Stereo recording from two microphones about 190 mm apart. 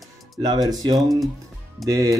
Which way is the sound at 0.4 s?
20° right (ahead or behind).